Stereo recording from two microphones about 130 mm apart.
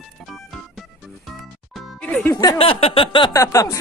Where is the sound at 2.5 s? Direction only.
45° left (ahead or behind).